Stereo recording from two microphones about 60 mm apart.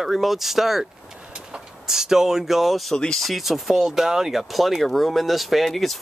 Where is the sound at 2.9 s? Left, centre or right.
Centre.